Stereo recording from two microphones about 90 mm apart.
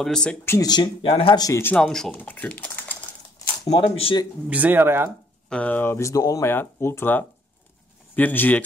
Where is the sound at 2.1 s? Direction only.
20° left (ahead or behind).